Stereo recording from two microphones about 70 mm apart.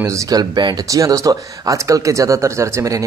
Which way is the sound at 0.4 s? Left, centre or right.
Right.